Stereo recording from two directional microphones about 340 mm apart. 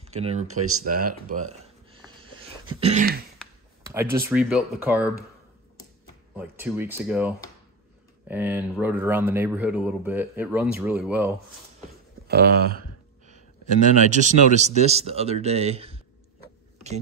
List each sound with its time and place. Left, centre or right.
0.0 s speech: centre
0.6 s speech: right
1.3 s a sound: centre
3.8 s speech: centre
6.3 s speech: centre
12.3 s speech: right
14.0 s speech: right